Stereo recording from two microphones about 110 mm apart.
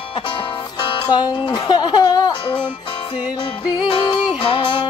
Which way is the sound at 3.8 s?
50° left (ahead or behind).